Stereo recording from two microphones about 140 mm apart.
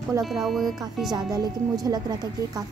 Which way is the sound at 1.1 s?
30° right (ahead or behind).